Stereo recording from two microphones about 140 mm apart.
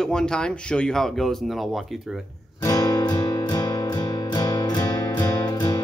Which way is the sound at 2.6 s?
25° left (ahead or behind).